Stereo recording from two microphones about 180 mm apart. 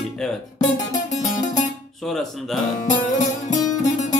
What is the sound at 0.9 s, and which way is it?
Music, 40° left (ahead or behind).